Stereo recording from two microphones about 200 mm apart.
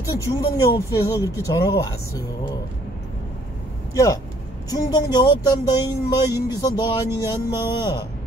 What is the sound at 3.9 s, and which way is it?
Speech, 15° left (ahead or behind).